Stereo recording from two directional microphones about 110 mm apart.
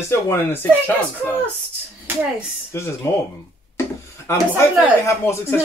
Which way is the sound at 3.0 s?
25° left (ahead or behind).